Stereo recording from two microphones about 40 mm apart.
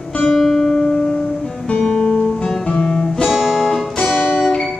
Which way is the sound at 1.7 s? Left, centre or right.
Left.